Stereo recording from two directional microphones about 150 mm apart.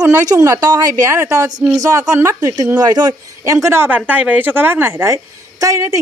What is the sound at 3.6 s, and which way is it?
Speech, 15° right (ahead or behind).